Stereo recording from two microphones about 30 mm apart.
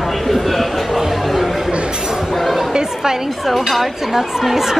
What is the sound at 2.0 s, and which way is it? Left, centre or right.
Speech, centre.